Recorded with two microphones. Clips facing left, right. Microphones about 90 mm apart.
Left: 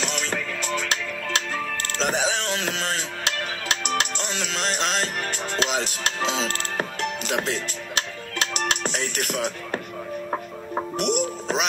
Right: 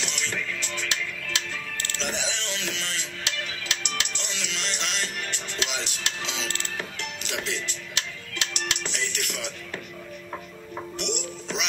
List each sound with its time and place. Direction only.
0.0 s music: 45° left (ahead or behind)